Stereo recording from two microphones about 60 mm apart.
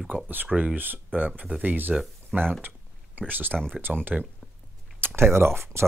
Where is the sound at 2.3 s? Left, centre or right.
Centre.